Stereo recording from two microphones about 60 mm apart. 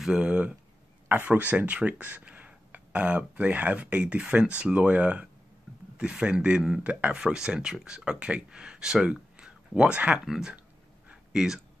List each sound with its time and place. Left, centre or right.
0.0 s speech: centre
7.2 s speech: centre
10.2 s speech: centre